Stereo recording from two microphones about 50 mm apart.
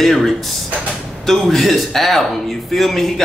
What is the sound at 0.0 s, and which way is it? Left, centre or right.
A man's voice, centre.